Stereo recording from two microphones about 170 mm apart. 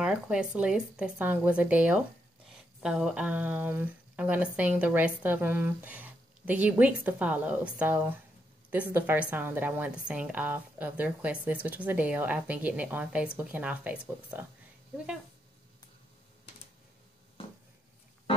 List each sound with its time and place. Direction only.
0.0 s speech: 5° right (ahead or behind)